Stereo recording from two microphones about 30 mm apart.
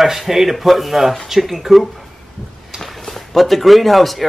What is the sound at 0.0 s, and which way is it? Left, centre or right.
Speech, centre.